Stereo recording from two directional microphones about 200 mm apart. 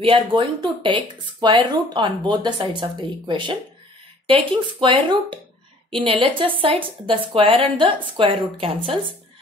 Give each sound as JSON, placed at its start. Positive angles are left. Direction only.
{"t": 0.0, "sound": "speech", "side_deg": -25}